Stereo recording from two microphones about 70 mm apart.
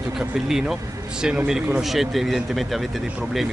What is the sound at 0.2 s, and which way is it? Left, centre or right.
Speech, centre.